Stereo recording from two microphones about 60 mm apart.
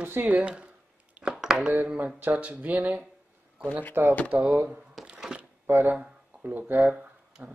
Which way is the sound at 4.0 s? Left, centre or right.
Right.